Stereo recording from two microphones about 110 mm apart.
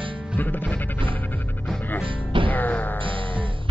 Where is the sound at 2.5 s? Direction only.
15° left (ahead or behind).